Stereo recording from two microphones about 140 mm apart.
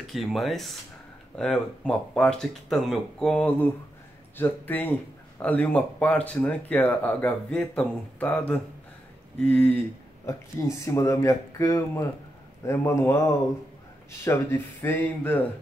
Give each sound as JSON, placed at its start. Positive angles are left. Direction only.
{"t": 0.0, "sound": "speech", "side_deg": 0}
{"t": 14.2, "sound": "speech", "side_deg": 20}